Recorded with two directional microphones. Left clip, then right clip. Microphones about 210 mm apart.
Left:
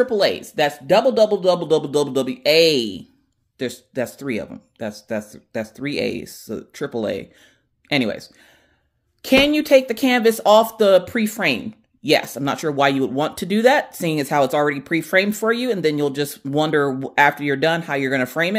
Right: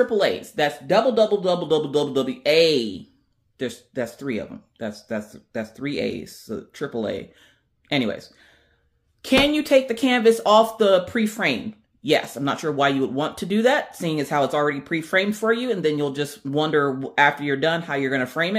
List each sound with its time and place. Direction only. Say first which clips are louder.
0.0 s speech: left 2 dB; 45° left (ahead or behind)